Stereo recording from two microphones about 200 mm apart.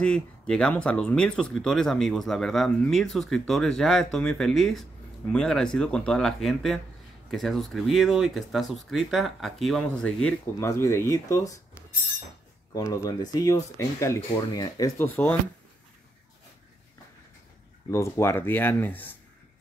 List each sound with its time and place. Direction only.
0.0 s speech: 5° left (ahead or behind)
12.7 s speech: 15° left (ahead or behind)
17.9 s speech: 15° left (ahead or behind)